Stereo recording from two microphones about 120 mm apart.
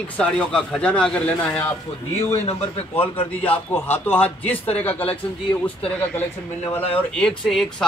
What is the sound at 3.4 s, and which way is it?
Speech, 15° left (ahead or behind).